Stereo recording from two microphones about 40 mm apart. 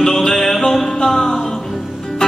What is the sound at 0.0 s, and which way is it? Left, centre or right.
Music, centre.